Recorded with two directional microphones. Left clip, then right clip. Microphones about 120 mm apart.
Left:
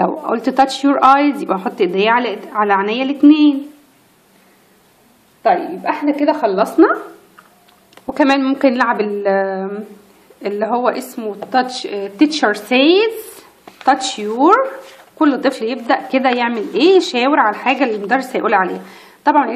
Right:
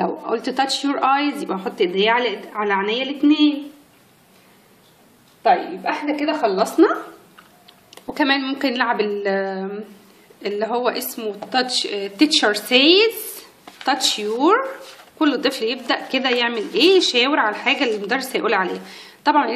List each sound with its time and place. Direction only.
0.0 s a woman's voice: 50° left (ahead or behind)
5.4 s a woman's voice: 70° left (ahead or behind); by 6.9 s 50° left (ahead or behind)
8.1 s a woman's voice: 35° left (ahead or behind)
11.1 s a woman's voice: 20° left (ahead or behind)
14.2 s a woman's voice: 25° left (ahead or behind)